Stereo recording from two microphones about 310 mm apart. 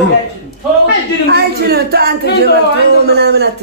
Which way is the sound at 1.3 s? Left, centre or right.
Right.